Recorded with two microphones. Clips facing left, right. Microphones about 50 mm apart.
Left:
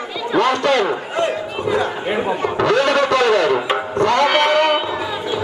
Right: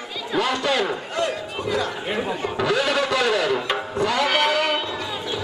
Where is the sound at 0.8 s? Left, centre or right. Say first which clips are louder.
Left 5 dB; left.